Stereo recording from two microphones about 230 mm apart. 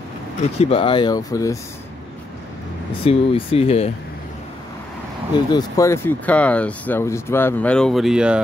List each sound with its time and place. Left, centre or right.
0.6 s speech: left
3.0 s speech: left
5.5 s speech: centre